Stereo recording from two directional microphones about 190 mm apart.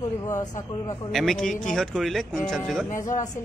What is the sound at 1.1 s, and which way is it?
Speech, centre (ahead or behind).